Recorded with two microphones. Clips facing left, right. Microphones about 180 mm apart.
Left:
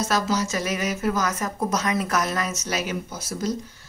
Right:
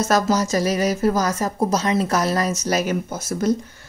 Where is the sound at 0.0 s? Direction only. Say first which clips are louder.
Right 5 dB; 45° right (ahead or behind).